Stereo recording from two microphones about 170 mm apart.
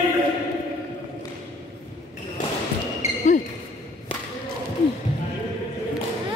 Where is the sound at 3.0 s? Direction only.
40° left (ahead or behind).